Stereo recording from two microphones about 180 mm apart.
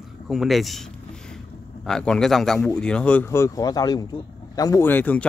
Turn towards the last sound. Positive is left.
turn(degrees=10)  # may be behind; listen again after turning